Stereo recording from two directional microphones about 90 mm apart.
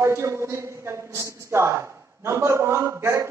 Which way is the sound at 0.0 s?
30° right (ahead or behind).